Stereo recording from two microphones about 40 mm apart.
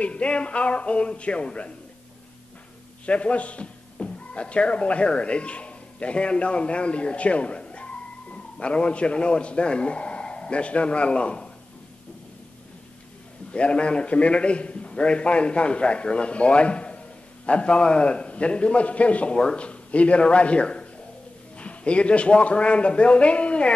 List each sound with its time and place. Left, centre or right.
0.0 s a man's voice: left
3.1 s speech: left
13.5 s a man's voice: left